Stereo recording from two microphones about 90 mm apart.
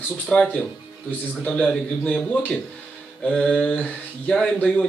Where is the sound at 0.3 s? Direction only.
10° left (ahead or behind).